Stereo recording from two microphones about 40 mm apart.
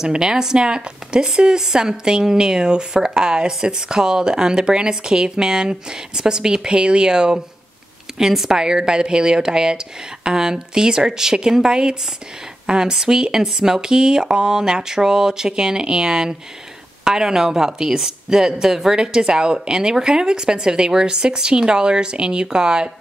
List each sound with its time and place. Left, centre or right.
0.0 s a woman's voice: centre